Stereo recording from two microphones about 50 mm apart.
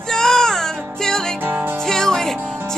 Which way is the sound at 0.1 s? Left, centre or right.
Centre.